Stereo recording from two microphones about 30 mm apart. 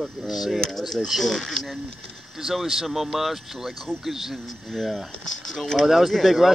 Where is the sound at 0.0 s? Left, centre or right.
Centre.